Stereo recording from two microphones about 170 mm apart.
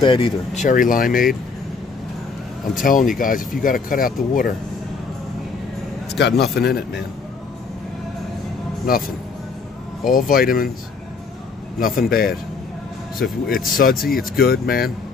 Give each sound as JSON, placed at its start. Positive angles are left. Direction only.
{"t": 0.0, "sound": "speech", "side_deg": 30}
{"t": 0.6, "sound": "speech", "side_deg": 50}
{"t": 2.7, "sound": "speech", "side_deg": 50}
{"t": 6.1, "sound": "speech", "side_deg": 75}
{"t": 8.8, "sound": "speech", "side_deg": 60}
{"t": 12.1, "sound": "speech", "side_deg": 60}
{"t": 13.5, "sound": "speech", "side_deg": 55}